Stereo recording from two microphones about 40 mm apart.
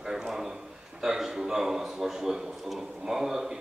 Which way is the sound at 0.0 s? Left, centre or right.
Centre.